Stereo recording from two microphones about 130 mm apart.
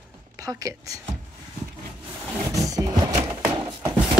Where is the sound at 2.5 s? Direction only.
25° right (ahead or behind).